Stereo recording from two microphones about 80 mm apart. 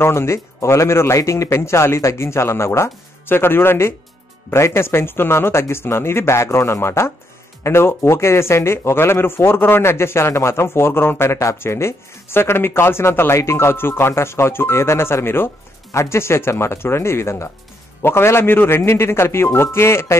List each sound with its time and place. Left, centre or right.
0.0 s speech: left